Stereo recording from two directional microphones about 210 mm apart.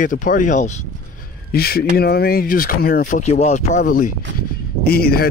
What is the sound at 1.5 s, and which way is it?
Speech, 45° left (ahead or behind).